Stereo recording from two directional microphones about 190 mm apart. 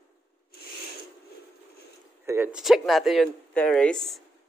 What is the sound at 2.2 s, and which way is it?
Speech, 15° right (ahead or behind).